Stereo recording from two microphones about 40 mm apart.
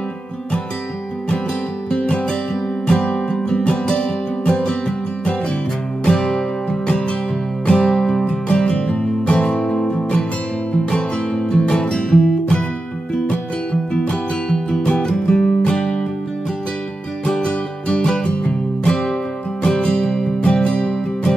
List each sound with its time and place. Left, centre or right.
1.9 s music: left
8.3 s music: left
13.9 s music: centre
14.7 s music: left
15.0 s music: centre
17.3 s music: left